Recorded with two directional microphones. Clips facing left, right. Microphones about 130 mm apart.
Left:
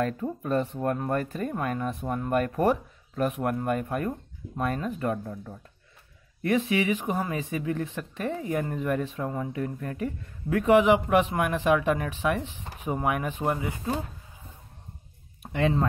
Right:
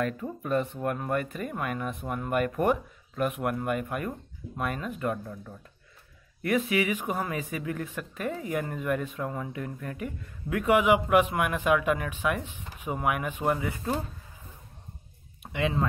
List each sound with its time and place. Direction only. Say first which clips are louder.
0.0 s speech: left 2 dB; 35° left (ahead or behind)
6.7 s speech: left 2 dB; 30° left (ahead or behind)
15.4 s speech: left 3 dB; 35° left (ahead or behind)